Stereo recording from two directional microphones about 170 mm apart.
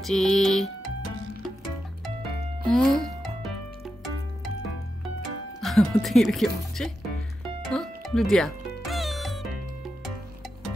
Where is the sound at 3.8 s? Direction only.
Centre (ahead or behind).